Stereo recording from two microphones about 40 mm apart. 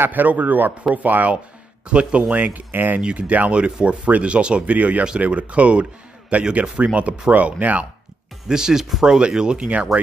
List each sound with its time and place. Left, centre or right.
0.0 s a man's voice: right
1.9 s speech: right
2.7 s speech: right
3.0 s speech: right
3.3 s speech: right
4.7 s speech: right
8.5 s speech: centre
9.9 s speech: centre